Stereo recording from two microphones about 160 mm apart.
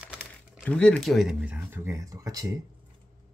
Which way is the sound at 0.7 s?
5° left (ahead or behind).